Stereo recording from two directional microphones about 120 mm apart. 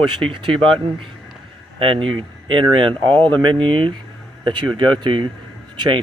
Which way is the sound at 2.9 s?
15° left (ahead or behind).